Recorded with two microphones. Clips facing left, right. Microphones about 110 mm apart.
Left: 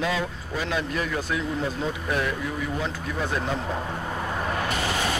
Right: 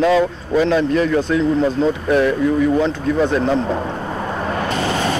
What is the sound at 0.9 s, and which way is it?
Speech, 90° right.